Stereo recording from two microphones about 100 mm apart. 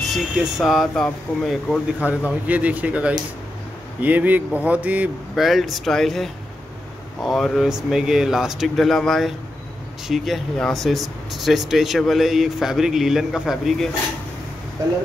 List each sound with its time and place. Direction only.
0.0 s speech: centre (ahead or behind)
2.0 s a man's voice: 15° right (ahead or behind)
5.3 s speech: centre (ahead or behind)